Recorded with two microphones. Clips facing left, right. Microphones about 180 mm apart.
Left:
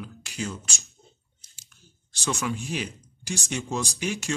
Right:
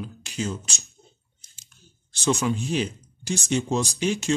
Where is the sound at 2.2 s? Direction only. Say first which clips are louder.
Right 6 dB; 25° right (ahead or behind).